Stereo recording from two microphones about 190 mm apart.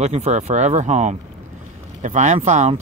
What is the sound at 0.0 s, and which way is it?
Speech, 35° right (ahead or behind).